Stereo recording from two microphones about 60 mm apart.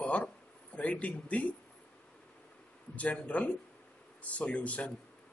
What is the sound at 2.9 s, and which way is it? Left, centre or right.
Speech, left.